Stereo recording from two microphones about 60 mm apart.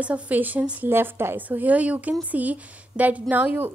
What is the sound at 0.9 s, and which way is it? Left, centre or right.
Speech, right.